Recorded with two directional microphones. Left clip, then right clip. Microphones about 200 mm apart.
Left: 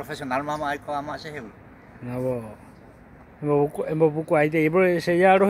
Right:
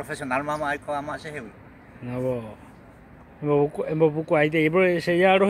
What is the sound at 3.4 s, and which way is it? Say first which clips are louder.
Speech: even; 5° left (ahead or behind).